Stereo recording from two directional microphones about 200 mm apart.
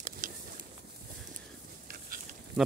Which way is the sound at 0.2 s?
40° right (ahead or behind).